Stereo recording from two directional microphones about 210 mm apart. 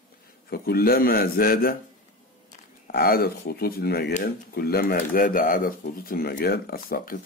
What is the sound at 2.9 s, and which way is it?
Speech, 45° left (ahead or behind).